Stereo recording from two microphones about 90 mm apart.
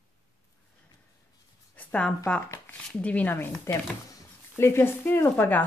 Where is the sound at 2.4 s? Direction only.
30° left (ahead or behind).